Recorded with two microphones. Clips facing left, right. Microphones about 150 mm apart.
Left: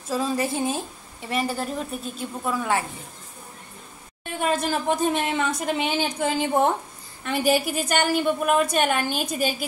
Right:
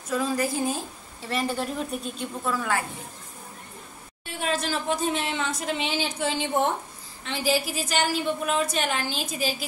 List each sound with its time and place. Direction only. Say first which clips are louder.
0.1 s speech: left 1 dB; 25° left (ahead or behind)
1.3 s a woman's voice: left 1 dB; 5° left (ahead or behind)
2.4 s speech: left 3 dB; 20° left (ahead or behind)
4.4 s a woman's voice: left 4 dB; 50° left (ahead or behind)